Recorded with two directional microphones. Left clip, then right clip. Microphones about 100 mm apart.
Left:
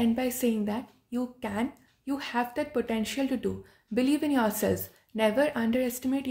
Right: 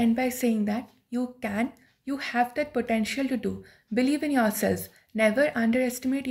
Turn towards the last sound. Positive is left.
turn(degrees=30)  # may be behind; listen again after turning